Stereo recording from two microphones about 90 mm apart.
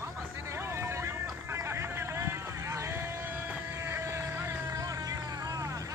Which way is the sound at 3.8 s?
30° right (ahead or behind).